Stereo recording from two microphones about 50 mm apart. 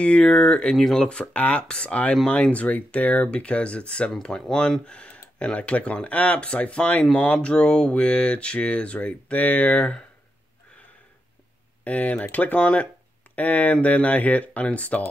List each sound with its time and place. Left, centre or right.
0.0 s speech: left
0.7 s speech: centre
1.0 s speech: left
11.8 s speech: left